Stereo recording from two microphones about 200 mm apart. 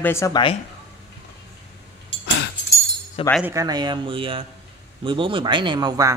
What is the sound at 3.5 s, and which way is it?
Speech, 15° right (ahead or behind).